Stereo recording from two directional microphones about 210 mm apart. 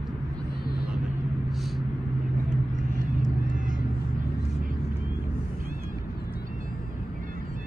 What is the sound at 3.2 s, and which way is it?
Vehicle, 40° right (ahead or behind).